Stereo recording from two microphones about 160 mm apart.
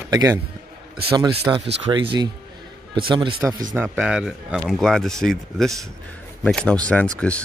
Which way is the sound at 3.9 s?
5° right (ahead or behind).